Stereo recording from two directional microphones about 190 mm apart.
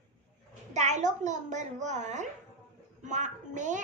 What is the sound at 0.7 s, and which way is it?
A child's voice, 40° right (ahead or behind).